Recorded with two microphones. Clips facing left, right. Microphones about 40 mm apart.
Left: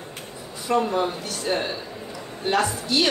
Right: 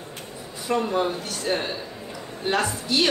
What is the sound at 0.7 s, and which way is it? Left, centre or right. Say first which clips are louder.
A woman's voice: left 1 dB; centre.